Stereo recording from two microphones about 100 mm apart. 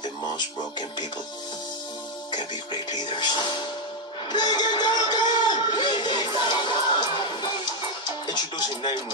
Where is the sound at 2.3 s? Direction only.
45° left (ahead or behind).